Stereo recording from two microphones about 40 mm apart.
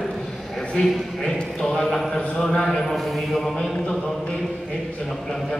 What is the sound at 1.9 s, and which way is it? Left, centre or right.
Speech, centre.